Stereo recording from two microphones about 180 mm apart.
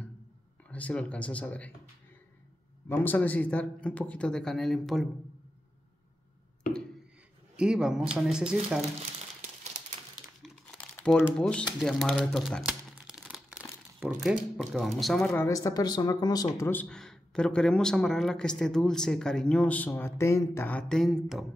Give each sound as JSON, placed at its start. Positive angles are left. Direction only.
{"t": 0.7, "sound": "speech", "side_deg": 10}
{"t": 2.9, "sound": "speech", "side_deg": 10}
{"t": 7.5, "sound": "speech", "side_deg": -5}
{"t": 9.6, "sound": "typewriter", "side_deg": -40}
{"t": 10.4, "sound": "speech", "side_deg": 5}
{"t": 16.8, "sound": "speech", "side_deg": 5}